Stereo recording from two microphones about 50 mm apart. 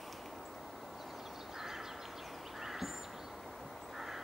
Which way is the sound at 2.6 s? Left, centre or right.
Centre.